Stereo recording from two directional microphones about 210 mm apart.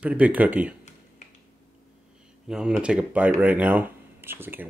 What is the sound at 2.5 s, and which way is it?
Speech, 5° right (ahead or behind).